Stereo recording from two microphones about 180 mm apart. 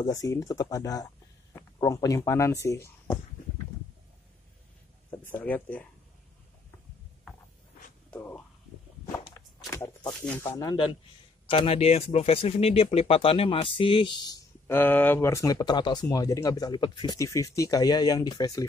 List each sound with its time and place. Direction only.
0.0 s speech: 20° left (ahead or behind)
5.2 s speech: 10° left (ahead or behind)
8.1 s speech: 10° left (ahead or behind)
9.4 s walk: 15° left (ahead or behind)
9.7 s a sound: 15° left (ahead or behind)
10.2 s speech: 10° left (ahead or behind)